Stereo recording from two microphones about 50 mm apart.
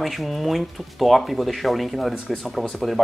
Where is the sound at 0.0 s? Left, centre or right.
Centre.